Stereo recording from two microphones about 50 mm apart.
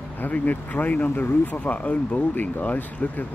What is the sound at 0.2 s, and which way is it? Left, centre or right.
Speech, left.